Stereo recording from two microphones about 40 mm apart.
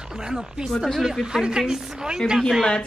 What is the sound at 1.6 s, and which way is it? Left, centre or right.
Speech, centre.